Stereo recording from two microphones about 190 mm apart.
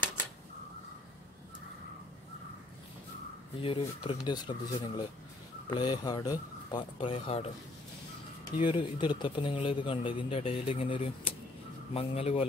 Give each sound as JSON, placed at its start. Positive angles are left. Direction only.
{"t": 3.6, "sound": "a man's voice", "side_deg": 25}
{"t": 8.5, "sound": "a man's voice", "side_deg": 25}